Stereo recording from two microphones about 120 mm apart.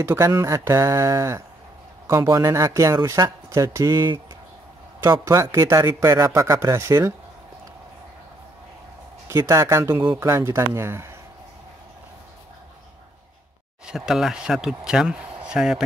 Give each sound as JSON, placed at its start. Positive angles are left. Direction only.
{"t": 0.0, "sound": "speech", "side_deg": -20}
{"t": 5.2, "sound": "speech", "side_deg": -25}
{"t": 9.3, "sound": "speech", "side_deg": -25}
{"t": 13.8, "sound": "speech", "side_deg": -5}